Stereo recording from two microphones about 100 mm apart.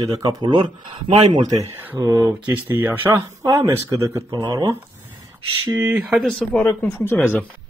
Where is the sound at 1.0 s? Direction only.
60° right (ahead or behind).